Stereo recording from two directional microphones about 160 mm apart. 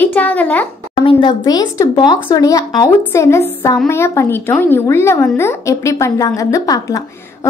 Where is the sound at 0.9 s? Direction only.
30° left (ahead or behind).